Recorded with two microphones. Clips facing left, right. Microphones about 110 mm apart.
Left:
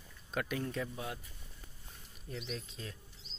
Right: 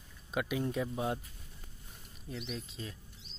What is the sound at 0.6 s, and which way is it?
Speech, 20° right (ahead or behind).